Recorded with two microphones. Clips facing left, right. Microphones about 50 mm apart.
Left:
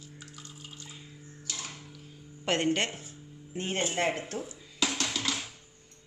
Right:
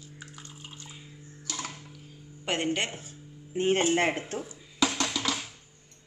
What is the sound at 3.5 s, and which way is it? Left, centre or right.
Speech, right.